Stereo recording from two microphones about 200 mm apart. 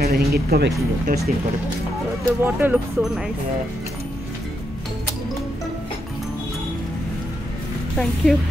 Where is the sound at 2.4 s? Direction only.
10° right (ahead or behind).